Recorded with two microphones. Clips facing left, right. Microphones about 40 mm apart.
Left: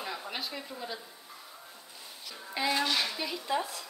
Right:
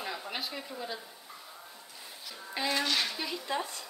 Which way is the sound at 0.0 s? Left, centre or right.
Centre.